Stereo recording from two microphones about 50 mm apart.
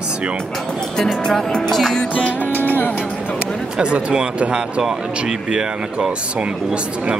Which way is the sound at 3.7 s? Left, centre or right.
Centre.